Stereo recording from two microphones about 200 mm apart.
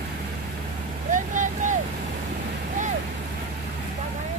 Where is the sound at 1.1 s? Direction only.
40° right (ahead or behind).